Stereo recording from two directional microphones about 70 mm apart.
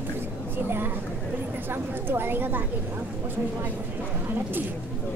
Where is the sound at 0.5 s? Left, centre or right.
Right.